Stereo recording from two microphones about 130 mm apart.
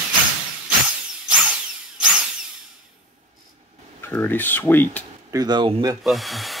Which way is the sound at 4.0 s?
15° left (ahead or behind).